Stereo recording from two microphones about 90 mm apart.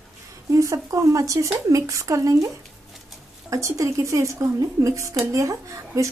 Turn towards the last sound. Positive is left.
turn(degrees=-35)  # may be behind; listen again after turning